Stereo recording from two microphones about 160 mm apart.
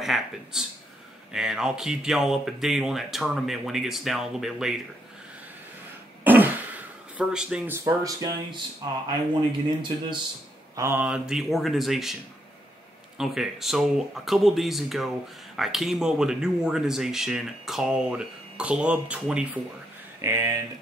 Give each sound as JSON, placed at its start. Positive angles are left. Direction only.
{"t": 0.0, "sound": "speech", "side_deg": 0}
{"t": 6.2, "sound": "throat clearing", "side_deg": -10}
{"t": 9.3, "sound": "speech", "side_deg": -30}
{"t": 10.8, "sound": "mantra", "side_deg": -15}
{"t": 11.1, "sound": "speech", "side_deg": -5}
{"t": 13.2, "sound": "speech", "side_deg": 0}
{"t": 20.2, "sound": "speech", "side_deg": -20}